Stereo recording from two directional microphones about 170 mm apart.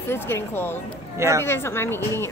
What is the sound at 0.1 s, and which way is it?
Speech, 15° left (ahead or behind).